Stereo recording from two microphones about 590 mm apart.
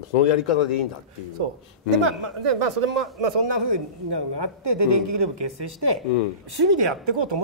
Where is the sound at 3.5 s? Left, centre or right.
Right.